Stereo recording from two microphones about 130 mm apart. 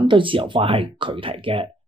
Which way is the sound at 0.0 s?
40° right (ahead or behind).